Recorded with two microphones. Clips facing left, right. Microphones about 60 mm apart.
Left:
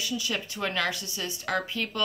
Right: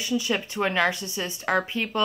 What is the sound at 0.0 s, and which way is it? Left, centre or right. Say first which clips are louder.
Speech: right 5 dB; right.